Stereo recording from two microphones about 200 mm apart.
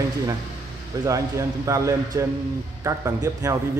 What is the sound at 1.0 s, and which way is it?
Speech, 15° right (ahead or behind).